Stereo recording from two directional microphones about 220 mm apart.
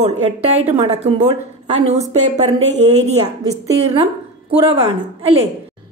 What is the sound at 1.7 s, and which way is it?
A woman's voice, 30° right (ahead or behind).